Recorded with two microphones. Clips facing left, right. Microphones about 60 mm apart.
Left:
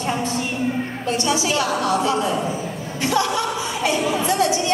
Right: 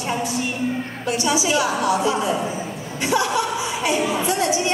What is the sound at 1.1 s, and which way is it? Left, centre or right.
A woman's voice, centre.